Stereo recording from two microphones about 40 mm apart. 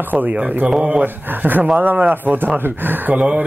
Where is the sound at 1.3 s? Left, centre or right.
Right.